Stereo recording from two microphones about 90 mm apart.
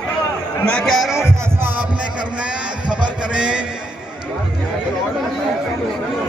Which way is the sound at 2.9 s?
10° right (ahead or behind).